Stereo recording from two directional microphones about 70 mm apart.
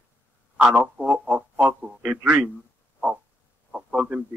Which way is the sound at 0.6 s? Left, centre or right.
Centre.